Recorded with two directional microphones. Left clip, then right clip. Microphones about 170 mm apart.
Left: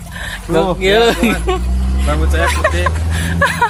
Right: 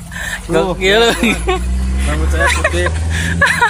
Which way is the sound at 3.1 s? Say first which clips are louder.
Right 2 dB; 10° left (ahead or behind).